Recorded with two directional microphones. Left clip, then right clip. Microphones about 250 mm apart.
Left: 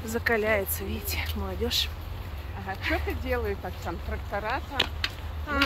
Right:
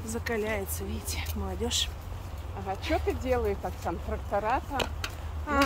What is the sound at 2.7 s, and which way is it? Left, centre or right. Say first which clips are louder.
Speech: even; right.